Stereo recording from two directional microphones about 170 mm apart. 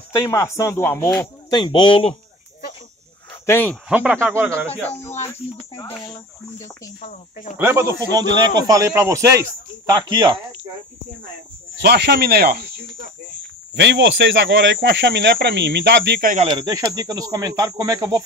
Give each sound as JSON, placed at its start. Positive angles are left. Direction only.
{"t": 0.1, "sound": "speech", "side_deg": 15}
{"t": 1.5, "sound": "speech", "side_deg": 25}
{"t": 3.4, "sound": "speech", "side_deg": 15}
{"t": 3.9, "sound": "speech", "side_deg": -10}
{"t": 7.1, "sound": "speech", "side_deg": 45}
{"t": 7.5, "sound": "a man's voice", "side_deg": -15}
{"t": 11.8, "sound": "speech", "side_deg": -70}
{"t": 13.7, "sound": "speech", "side_deg": -90}
{"t": 16.2, "sound": "speech", "side_deg": -50}
{"t": 16.4, "sound": "a man's voice", "side_deg": -25}